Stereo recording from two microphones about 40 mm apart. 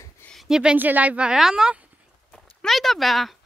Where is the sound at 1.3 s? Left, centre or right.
Centre.